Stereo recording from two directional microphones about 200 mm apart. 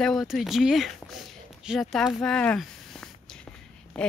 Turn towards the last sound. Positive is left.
turn(degrees=5)  # may be behind; listen again after turning